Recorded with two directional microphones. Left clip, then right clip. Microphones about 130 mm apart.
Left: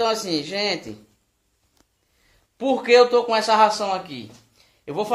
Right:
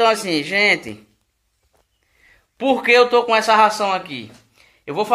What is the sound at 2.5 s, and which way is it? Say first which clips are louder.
A man's voice: right 2 dB; 15° right (ahead or behind).